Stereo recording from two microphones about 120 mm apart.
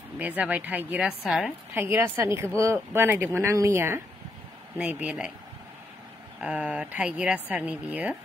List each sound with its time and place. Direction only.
0.2 s speech: 15° right (ahead or behind)
4.7 s speech: 10° right (ahead or behind)
6.4 s speech: 5° right (ahead or behind)